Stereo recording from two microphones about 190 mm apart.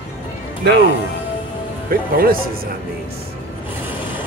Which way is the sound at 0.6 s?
60° right (ahead or behind).